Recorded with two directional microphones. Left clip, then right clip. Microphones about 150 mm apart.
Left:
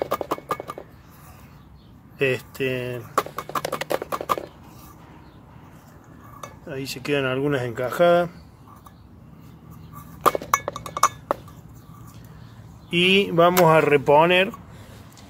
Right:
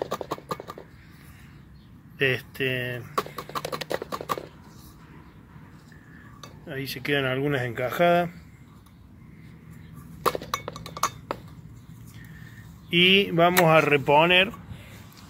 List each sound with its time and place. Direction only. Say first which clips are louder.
0.0 s horse: left 5 dB; 5° left (ahead or behind)
2.1 s speech: left 2 dB; 20° left (ahead or behind)
3.2 s a sound: left 6 dB; centre (ahead or behind)
6.7 s speech: left 2 dB; 15° left (ahead or behind)
10.2 s chink: left 7 dB; 5° right (ahead or behind)
12.9 s speech: left 1 dB; 15° left (ahead or behind)